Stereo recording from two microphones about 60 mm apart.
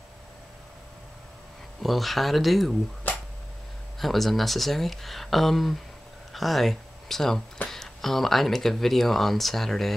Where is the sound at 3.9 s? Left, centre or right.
Centre.